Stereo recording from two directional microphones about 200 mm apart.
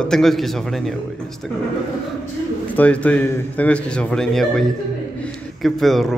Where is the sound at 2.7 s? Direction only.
5° left (ahead or behind).